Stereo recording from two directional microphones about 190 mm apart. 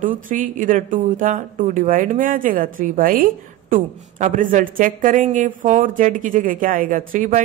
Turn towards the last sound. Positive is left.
turn(degrees=-45)  # may be behind; listen again after turning